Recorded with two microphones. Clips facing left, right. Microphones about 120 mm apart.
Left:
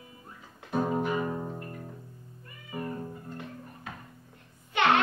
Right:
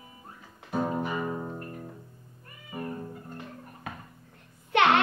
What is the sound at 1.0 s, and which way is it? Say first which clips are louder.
Music: left 1 dB; 5° right (ahead or behind).